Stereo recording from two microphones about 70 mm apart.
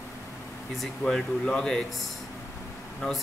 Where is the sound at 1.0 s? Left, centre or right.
Centre.